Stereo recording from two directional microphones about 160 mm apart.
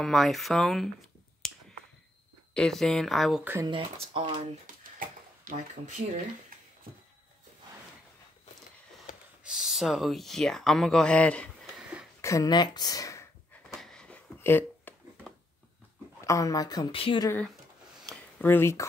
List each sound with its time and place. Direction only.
0.0 s speech: centre (ahead or behind)
1.4 s finger snapping: centre (ahead or behind)
2.5 s speech: 5° left (ahead or behind)
3.6 s speech: 30° right (ahead or behind)
4.6 s a sound: 60° right (ahead or behind)
9.4 s speech: 5° right (ahead or behind)
12.2 s speech: 20° left (ahead or behind)
13.7 s a sound: centre (ahead or behind)
16.3 s speech: 20° left (ahead or behind)
18.0 s a sound: 10° left (ahead or behind)